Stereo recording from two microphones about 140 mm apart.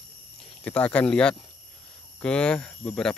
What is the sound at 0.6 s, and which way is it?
Speech, 10° left (ahead or behind).